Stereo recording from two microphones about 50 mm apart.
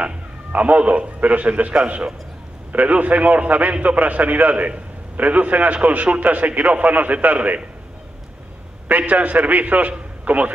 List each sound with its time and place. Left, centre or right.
0.0 s a man's voice: right
8.8 s a man's voice: right